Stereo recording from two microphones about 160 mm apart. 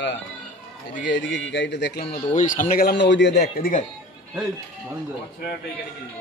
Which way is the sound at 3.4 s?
55° left (ahead or behind).